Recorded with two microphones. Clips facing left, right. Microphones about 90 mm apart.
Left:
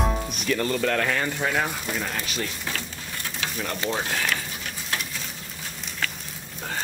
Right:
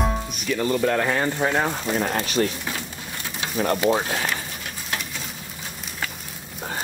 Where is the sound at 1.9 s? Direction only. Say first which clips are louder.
Right 7 dB; 40° right (ahead or behind).